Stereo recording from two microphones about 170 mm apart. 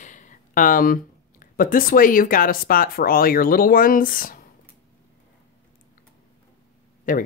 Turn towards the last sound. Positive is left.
turn(degrees=50)  # may be behind; listen again after turning